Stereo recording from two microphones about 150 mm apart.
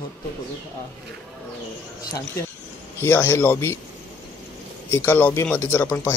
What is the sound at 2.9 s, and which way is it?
Speech, 15° left (ahead or behind).